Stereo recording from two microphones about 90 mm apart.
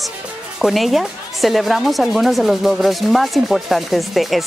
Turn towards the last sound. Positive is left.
turn(degrees=0)  # may be behind; listen again after turning